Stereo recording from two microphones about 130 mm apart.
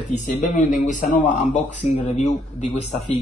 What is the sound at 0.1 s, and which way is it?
Speech, 70° left (ahead or behind).